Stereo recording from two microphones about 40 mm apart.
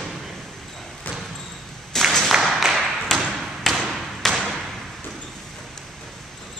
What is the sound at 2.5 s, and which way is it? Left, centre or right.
Tap, centre.